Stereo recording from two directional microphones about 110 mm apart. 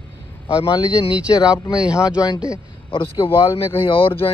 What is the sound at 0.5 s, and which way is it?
Speech, 30° left (ahead or behind).